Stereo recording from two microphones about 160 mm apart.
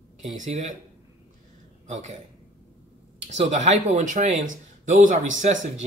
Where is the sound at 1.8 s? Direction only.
50° right (ahead or behind).